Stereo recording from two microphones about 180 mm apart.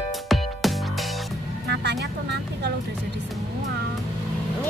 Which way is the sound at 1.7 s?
70° right (ahead or behind).